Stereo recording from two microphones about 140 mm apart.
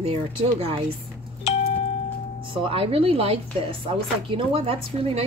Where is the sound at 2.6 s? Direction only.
40° right (ahead or behind).